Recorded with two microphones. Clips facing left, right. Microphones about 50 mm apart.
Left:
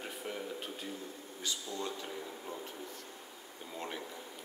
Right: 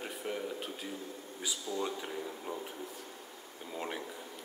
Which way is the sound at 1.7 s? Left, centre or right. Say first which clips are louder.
Right 3 dB; centre.